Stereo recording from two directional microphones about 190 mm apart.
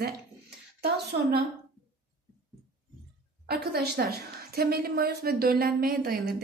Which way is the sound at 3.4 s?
55° right (ahead or behind).